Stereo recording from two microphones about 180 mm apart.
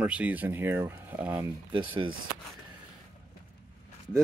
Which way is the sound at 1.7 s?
30° right (ahead or behind).